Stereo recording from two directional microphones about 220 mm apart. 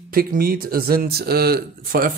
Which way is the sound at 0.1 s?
40° right (ahead or behind).